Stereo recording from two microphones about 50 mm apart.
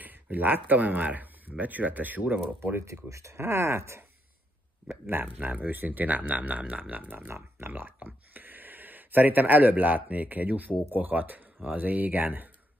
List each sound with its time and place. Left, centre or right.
0.0 s speech: right
2.6 s speech: right
2.9 s speech: right
5.2 s speech: right
7.2 s speech: right